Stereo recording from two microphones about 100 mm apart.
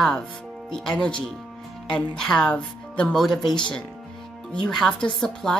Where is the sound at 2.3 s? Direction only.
10° left (ahead or behind).